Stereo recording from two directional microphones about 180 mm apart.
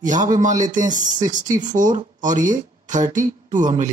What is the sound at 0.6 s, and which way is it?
Speech, 45° right (ahead or behind).